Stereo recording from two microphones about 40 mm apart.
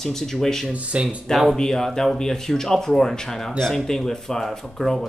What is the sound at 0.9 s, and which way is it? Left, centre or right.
Speech, right.